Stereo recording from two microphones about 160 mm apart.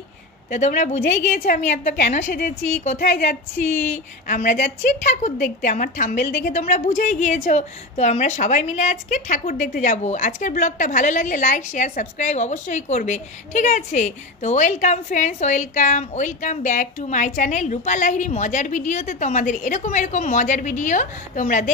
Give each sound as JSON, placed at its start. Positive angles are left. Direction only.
{"t": 0.5, "sound": "a woman's voice", "side_deg": 50}
{"t": 3.0, "sound": "a sound", "side_deg": 60}
{"t": 4.3, "sound": "a woman's voice", "side_deg": 50}